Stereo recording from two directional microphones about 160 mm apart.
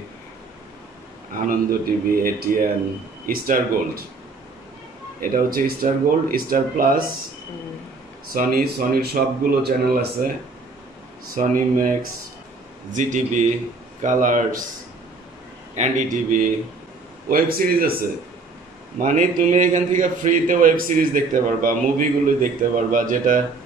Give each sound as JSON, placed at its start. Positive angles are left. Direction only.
{"t": 1.5, "sound": "a man's voice", "side_deg": -65}
{"t": 5.2, "sound": "a man's voice", "side_deg": -60}
{"t": 8.3, "sound": "speech", "side_deg": -65}
{"t": 11.3, "sound": "a man's voice", "side_deg": -55}
{"t": 15.7, "sound": "a man's voice", "side_deg": -50}
{"t": 17.3, "sound": "a man's voice", "side_deg": -65}
{"t": 18.9, "sound": "a man's voice", "side_deg": -55}